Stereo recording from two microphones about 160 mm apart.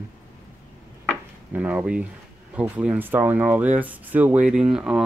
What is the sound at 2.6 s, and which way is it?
Speech, 10° right (ahead or behind).